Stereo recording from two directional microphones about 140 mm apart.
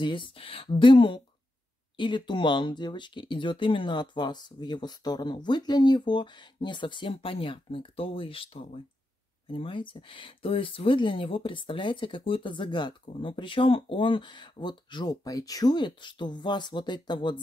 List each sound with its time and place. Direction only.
0.0 s speech: 35° left (ahead or behind)